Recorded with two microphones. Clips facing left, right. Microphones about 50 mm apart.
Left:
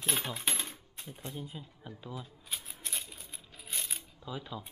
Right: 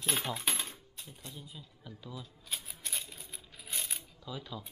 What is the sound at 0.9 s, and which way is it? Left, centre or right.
Speech, left.